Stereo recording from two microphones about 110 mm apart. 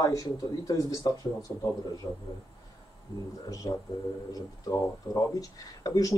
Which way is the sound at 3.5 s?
30° left (ahead or behind).